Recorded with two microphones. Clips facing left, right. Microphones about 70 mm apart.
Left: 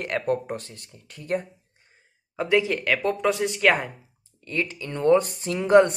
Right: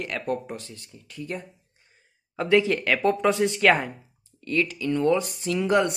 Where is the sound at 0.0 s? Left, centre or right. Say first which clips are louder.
Left 3 dB; left.